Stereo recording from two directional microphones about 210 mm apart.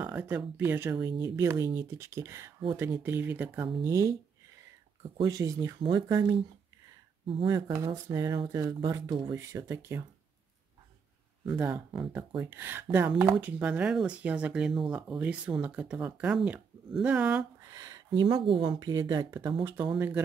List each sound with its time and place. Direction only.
0.0 s speech: 10° right (ahead or behind)
5.1 s speech: 15° right (ahead or behind)
7.2 s speech: 20° right (ahead or behind)
11.4 s speech: 10° right (ahead or behind)
17.6 s speech: 15° right (ahead or behind)